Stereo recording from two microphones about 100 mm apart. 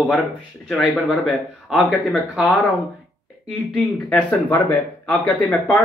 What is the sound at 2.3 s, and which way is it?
Speech, 5° right (ahead or behind).